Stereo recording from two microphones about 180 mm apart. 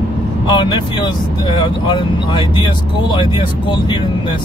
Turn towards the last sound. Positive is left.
turn(degrees=25)  # may be behind; listen again after turning